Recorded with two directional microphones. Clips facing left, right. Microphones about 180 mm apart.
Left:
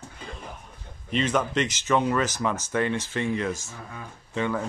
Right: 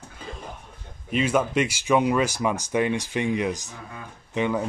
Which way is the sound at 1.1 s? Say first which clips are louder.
Right 2 dB; 10° right (ahead or behind).